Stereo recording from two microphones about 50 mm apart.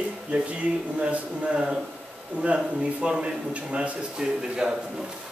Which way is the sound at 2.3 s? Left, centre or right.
Right.